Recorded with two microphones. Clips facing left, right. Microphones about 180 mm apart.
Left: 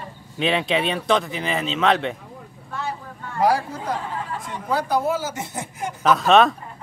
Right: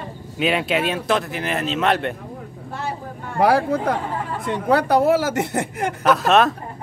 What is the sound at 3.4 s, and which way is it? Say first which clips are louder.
Speech: right 4 dB; 60° right (ahead or behind).